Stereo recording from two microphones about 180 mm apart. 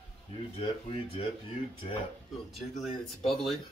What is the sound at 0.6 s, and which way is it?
Speech, 30° left (ahead or behind).